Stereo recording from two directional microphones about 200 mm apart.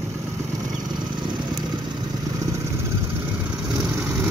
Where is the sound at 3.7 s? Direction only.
10° right (ahead or behind).